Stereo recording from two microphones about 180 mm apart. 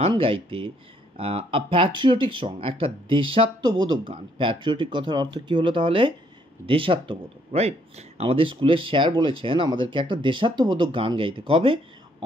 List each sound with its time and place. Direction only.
0.1 s speech: 30° right (ahead or behind)